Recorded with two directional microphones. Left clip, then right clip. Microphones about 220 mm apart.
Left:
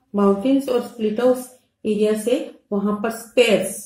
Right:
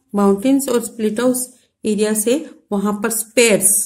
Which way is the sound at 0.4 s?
35° right (ahead or behind).